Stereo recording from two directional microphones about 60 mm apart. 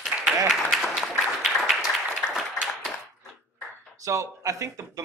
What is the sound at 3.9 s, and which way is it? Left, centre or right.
Speech, right.